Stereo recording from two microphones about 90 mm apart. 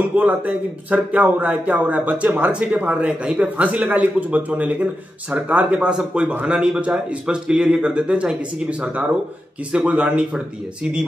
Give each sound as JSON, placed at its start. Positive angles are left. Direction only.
{"t": 0.1, "sound": "speech", "side_deg": -20}